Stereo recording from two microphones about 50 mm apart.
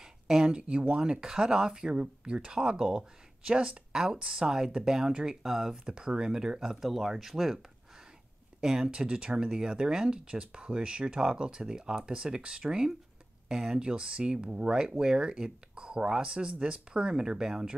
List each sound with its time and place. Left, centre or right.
0.0 s a sound: centre
0.6 s speech: right; by 5.8 s centre
5.9 s speech: centre
8.5 s speech: centre